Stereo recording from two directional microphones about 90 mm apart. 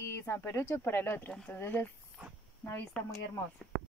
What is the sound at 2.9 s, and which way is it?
Speech, 10° left (ahead or behind).